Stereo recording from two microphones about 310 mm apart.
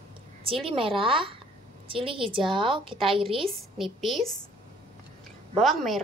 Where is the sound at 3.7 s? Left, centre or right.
Centre.